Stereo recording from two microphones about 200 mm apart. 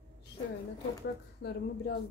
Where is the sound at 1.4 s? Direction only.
55° left (ahead or behind).